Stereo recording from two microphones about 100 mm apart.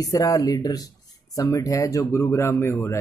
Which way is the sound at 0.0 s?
35° left (ahead or behind).